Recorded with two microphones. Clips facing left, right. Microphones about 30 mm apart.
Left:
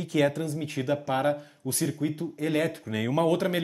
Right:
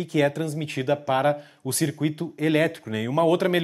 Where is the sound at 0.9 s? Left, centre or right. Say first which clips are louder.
Right 4 dB; right.